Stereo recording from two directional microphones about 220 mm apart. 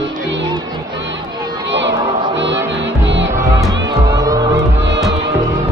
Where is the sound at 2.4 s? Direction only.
55° right (ahead or behind).